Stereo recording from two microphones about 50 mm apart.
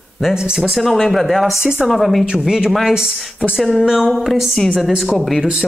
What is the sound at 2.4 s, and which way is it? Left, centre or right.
A woman's voice, centre.